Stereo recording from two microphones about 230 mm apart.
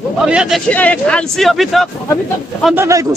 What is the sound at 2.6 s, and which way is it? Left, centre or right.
Speech, centre.